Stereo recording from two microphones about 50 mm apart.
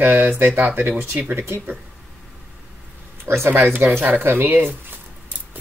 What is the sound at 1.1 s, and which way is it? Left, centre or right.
Speech, right.